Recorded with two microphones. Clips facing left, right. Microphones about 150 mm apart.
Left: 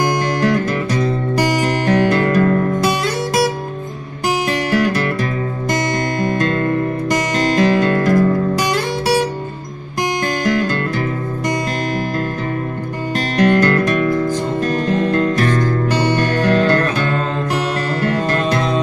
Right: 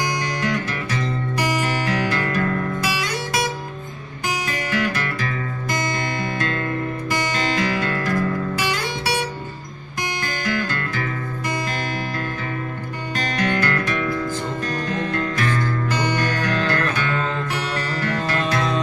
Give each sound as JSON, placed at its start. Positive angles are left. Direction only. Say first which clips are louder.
{"t": 0.0, "sound": "music", "louder": "left 8 dB", "side_deg": 50}
{"t": 1.6, "sound": "music", "louder": "left 7 dB", "side_deg": 40}
{"t": 6.2, "sound": "music", "louder": "left 8 dB", "side_deg": 40}
{"t": 10.4, "sound": "music", "louder": "left 6 dB", "side_deg": 40}
{"t": 13.4, "sound": "music", "louder": "left 10 dB", "side_deg": 50}
{"t": 14.6, "sound": "music", "louder": "left 8 dB", "side_deg": 55}
{"t": 15.0, "sound": "music", "louder": "left 8 dB", "side_deg": 40}